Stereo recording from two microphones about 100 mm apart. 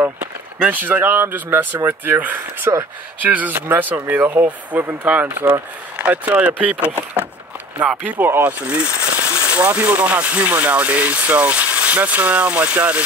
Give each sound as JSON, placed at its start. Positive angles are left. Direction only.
{"t": 0.6, "sound": "speech", "side_deg": -15}
{"t": 7.8, "sound": "speech", "side_deg": -15}